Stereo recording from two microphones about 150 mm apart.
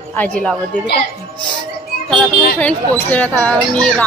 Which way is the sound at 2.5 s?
10° left (ahead or behind).